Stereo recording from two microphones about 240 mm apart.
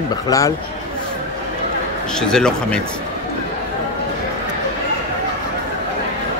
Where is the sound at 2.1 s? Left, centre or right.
Centre.